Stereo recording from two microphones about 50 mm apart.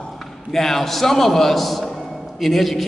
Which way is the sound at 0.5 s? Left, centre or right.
Centre.